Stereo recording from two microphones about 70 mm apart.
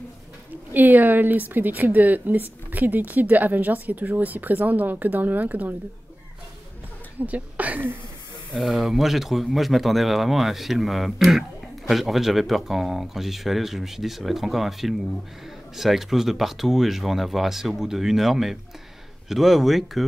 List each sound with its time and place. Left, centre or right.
0.7 s a woman's voice: right
7.2 s a woman's voice: right
8.5 s speech: centre